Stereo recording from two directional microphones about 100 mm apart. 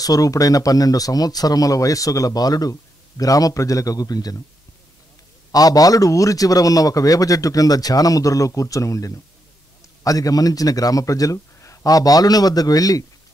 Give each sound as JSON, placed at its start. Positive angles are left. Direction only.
{"t": 0.0, "sound": "speech", "side_deg": 35}
{"t": 5.5, "sound": "speech", "side_deg": 40}